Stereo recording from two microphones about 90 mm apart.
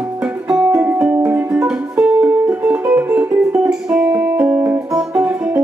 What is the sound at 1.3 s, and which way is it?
Music, 20° right (ahead or behind).